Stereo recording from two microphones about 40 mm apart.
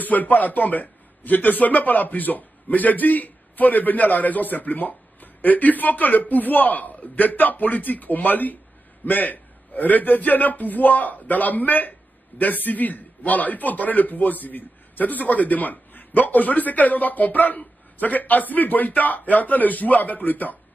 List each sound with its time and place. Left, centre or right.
0.0 s a man's voice: left